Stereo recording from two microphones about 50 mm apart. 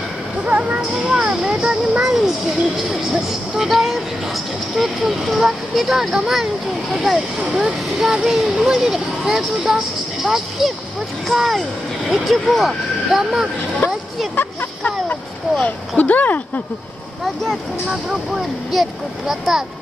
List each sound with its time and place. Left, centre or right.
0.5 s a sound: right
0.7 s a child's voice: centre
13.8 s speech: left
16.0 s speech: left
17.2 s speech: centre
18.3 s speech: centre